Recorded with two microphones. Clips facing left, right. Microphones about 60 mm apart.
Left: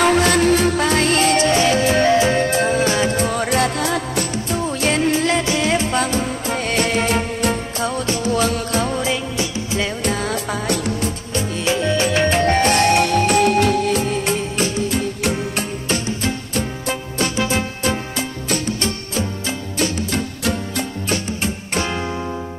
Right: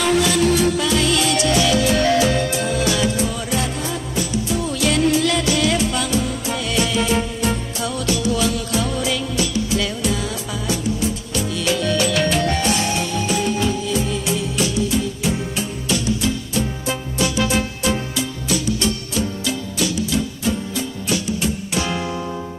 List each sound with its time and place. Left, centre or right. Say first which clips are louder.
0.0 s music: left 2 dB; left
4.6 s music: even; left
10.0 s music: left 2 dB; left
11.3 s music: left 2 dB; left